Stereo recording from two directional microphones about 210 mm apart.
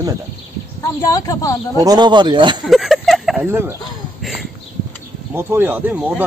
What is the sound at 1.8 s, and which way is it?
Speech, 20° right (ahead or behind).